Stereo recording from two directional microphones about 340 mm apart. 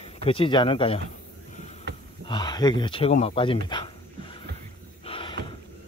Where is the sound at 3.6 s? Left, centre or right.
Centre.